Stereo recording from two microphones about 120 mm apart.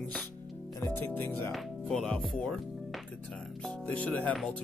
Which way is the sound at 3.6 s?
10° left (ahead or behind).